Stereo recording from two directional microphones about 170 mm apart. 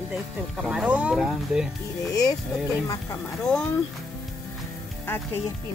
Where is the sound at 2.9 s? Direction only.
15° left (ahead or behind).